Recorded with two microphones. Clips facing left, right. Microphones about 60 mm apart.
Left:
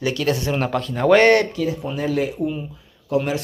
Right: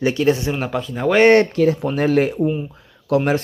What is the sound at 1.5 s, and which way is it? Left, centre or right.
Speech, right.